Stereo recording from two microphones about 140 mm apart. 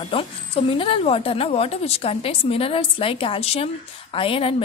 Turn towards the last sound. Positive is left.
turn(degrees=40)  # may be behind; listen again after turning